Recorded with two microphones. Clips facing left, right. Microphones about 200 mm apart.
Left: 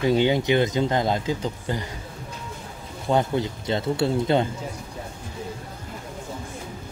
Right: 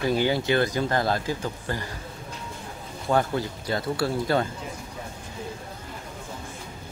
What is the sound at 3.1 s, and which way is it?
Speech, 20° left (ahead or behind).